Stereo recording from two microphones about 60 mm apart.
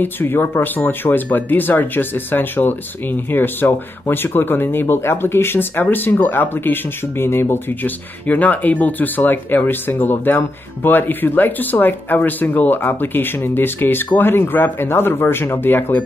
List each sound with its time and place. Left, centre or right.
0.0 s speech: left
7.8 s speech: left